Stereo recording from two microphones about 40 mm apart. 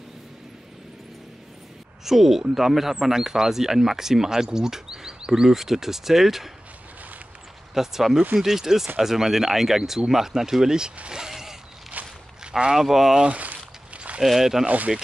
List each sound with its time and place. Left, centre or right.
2.0 s speech: centre
7.7 s speech: centre
11.1 s a sound: centre
11.9 s walk: right
12.7 s speech: centre
13.2 s a sound: right
14.2 s speech: centre